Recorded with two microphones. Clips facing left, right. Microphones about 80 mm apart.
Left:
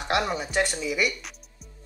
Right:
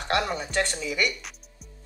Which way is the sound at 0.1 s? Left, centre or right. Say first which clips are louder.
Left 1 dB; centre.